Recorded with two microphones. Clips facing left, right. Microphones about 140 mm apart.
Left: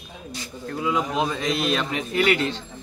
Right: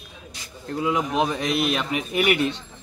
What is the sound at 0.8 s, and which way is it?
A man's voice, 20° right (ahead or behind).